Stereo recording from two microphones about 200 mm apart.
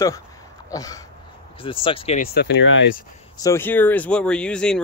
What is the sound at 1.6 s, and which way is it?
Speech, 25° left (ahead or behind).